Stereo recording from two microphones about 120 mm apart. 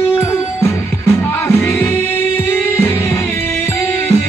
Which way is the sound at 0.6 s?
20° left (ahead or behind).